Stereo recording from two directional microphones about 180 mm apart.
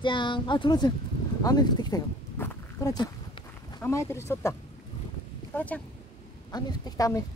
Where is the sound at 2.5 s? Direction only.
20° left (ahead or behind).